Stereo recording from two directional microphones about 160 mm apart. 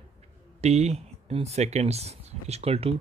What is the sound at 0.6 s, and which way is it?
Speech, 40° right (ahead or behind).